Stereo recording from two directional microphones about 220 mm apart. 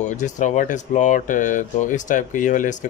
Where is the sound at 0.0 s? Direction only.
35° left (ahead or behind).